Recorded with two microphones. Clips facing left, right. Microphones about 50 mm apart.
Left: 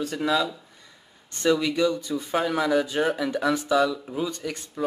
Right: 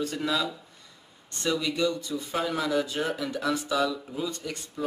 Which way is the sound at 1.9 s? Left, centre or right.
Left.